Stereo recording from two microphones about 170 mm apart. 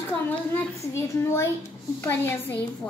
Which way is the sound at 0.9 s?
15° left (ahead or behind).